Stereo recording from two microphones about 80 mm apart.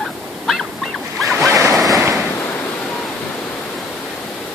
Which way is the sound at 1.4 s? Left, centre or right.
Right.